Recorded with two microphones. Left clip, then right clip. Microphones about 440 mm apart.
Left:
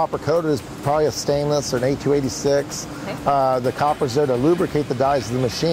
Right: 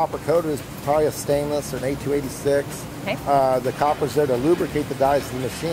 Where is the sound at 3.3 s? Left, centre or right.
Left.